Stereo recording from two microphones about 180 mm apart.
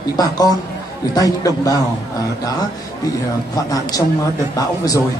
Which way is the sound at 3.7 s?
20° left (ahead or behind).